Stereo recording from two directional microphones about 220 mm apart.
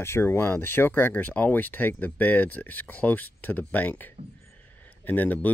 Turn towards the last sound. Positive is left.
turn(degrees=5)  # may be behind; listen again after turning